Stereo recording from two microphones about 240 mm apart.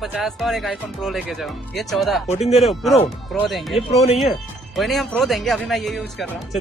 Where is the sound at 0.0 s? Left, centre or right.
Centre.